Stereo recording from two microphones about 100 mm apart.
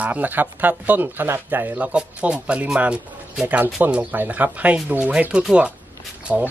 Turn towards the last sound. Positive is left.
turn(degrees=-15)  # may be behind; listen again after turning